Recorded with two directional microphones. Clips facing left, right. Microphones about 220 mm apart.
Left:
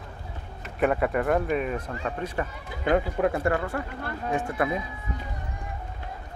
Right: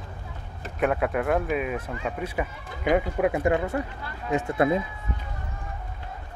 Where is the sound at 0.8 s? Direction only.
Centre (ahead or behind).